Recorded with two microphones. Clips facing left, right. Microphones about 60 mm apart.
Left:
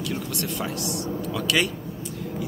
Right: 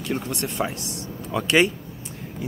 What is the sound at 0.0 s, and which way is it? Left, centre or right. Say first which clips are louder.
Speech: right 2 dB; right.